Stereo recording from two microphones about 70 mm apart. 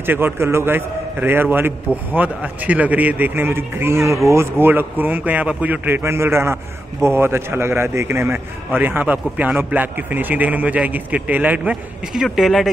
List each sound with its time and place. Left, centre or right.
0.0 s a man's voice: right
8.7 s a man's voice: right
12.1 s speech: centre